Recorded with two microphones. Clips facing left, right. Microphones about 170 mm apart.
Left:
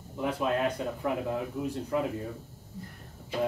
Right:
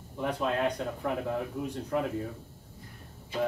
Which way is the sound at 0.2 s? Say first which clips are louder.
Left 1 dB; 5° left (ahead or behind).